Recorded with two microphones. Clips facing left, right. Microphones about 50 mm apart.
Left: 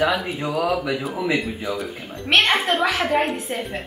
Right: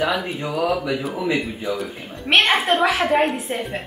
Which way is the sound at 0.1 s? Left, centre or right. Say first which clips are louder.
Even; centre.